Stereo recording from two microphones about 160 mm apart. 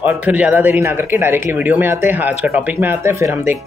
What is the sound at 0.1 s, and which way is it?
Speech, 10° right (ahead or behind).